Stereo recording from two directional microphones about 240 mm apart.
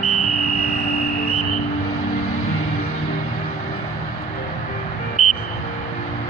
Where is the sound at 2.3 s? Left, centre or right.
Left.